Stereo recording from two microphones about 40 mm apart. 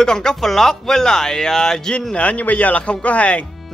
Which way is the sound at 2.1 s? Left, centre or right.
Left.